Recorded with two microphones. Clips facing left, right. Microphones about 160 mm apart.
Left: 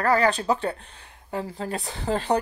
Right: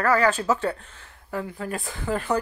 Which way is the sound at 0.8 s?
20° left (ahead or behind).